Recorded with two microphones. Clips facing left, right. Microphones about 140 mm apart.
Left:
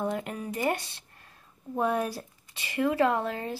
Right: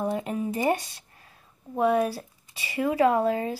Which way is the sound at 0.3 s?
20° right (ahead or behind).